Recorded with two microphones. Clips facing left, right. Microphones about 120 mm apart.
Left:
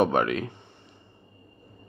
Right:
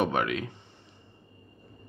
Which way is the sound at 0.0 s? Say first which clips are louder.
Left 4 dB; 40° left (ahead or behind).